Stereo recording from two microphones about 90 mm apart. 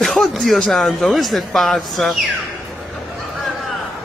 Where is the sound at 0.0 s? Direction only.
Centre (ahead or behind).